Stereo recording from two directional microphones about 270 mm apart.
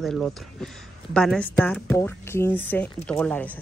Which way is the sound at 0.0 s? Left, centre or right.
Centre.